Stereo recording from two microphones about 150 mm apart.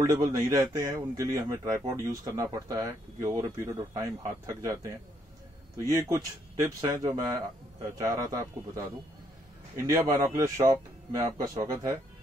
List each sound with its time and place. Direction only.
0.0 s speech: 20° right (ahead or behind)
5.9 s speech: 20° right (ahead or behind)